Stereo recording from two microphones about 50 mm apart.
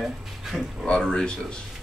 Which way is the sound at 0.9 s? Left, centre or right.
Centre.